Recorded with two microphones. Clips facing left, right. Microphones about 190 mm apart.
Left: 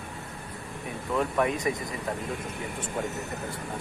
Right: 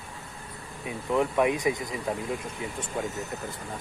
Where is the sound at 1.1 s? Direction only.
15° right (ahead or behind).